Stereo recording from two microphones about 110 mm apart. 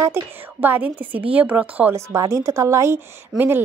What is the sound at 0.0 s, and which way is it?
A woman's voice, 20° right (ahead or behind).